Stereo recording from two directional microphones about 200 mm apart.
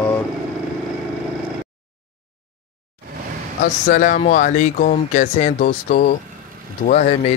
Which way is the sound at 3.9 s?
45° left (ahead or behind).